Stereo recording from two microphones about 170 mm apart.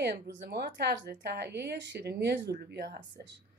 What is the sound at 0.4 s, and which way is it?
Speech, 80° right.